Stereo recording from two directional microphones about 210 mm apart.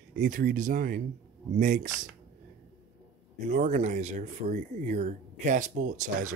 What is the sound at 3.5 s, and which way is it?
Speech, 35° right (ahead or behind).